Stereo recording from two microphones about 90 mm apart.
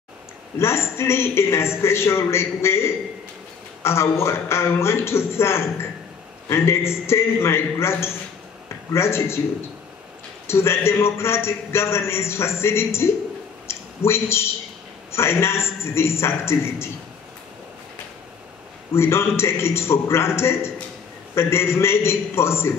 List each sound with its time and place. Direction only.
0.6 s a man's voice: 30° left (ahead or behind)
10.4 s a man's voice: 30° left (ahead or behind)
13.7 s a sound: 30° left (ahead or behind)
15.0 s a man's voice: 30° left (ahead or behind)
18.9 s a man's voice: 30° left (ahead or behind)